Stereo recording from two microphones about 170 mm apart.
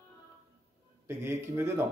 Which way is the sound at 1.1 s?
15° right (ahead or behind).